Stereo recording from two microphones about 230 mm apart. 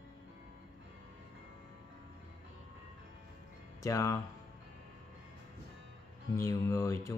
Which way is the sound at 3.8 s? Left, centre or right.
Centre.